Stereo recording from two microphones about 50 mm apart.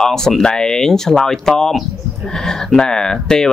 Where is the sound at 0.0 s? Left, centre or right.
Centre.